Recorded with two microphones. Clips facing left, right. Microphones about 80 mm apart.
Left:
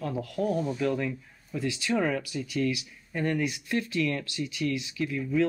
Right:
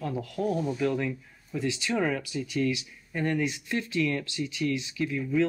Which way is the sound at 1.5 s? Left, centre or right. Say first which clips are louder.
Right 1 dB; right.